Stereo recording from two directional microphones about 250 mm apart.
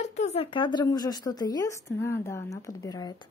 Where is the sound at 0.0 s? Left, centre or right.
Left.